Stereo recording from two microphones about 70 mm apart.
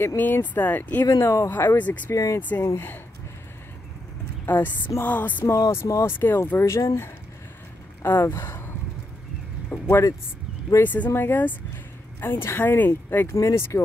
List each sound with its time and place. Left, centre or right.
0.0 s speech: left
0.6 s music: left
1.2 s speech: left
1.5 s speech: left
2.1 s speech: left
2.6 s speech: left
4.5 s music: left
5.7 s speech: left
6.0 s speech: left
8.0 s speech: left
9.7 s a sound: left
10.8 s music: left
11.1 s speech: left
13.3 s speech: left